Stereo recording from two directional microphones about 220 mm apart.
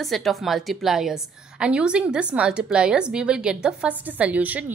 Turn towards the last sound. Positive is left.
turn(degrees=-5)  # may be behind; listen again after turning